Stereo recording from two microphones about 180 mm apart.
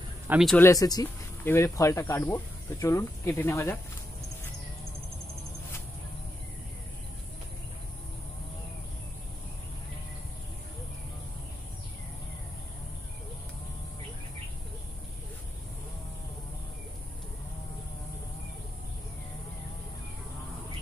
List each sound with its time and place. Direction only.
0.3 s speech: 5° right (ahead or behind)
0.6 s speech: 20° left (ahead or behind)